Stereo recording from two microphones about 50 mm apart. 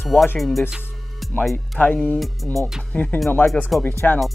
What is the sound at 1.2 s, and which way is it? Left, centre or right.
Music, centre.